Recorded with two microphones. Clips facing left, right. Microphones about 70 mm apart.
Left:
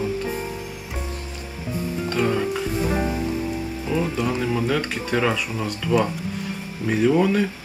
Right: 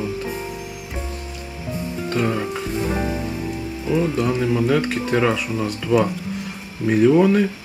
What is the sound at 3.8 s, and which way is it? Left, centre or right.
Speech, centre.